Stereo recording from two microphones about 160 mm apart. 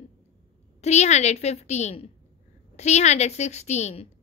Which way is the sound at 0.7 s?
45° left (ahead or behind).